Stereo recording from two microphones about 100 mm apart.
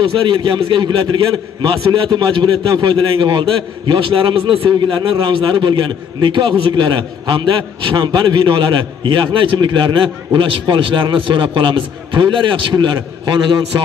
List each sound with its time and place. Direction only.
0.0 s a man's voice: 60° right (ahead or behind)